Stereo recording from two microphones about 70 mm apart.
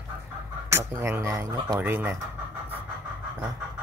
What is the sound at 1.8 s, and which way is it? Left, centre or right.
Speech, right.